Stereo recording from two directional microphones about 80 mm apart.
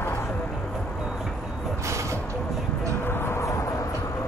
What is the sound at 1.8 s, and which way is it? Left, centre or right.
Vehicle, right.